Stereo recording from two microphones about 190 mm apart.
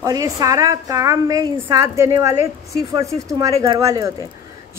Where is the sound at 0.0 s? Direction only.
20° right (ahead or behind).